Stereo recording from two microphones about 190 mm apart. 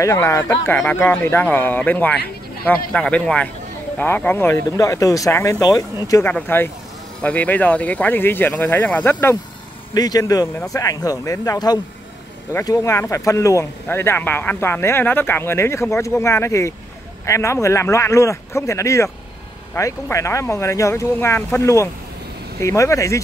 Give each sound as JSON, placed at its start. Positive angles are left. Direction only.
{"t": 0.0, "sound": "speech", "side_deg": 15}